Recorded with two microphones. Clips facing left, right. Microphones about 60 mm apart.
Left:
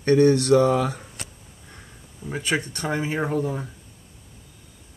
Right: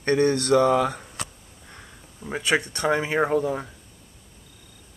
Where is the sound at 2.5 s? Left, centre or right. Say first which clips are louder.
Right 4 dB; right.